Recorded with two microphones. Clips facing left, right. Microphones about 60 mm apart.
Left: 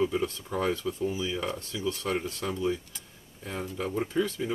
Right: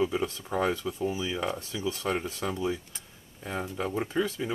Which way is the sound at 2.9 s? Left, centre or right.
Right.